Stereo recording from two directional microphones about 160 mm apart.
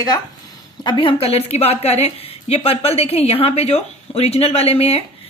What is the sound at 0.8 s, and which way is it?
A woman's voice, 35° left (ahead or behind).